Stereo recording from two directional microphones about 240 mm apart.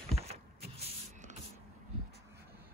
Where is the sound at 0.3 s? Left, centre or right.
Right.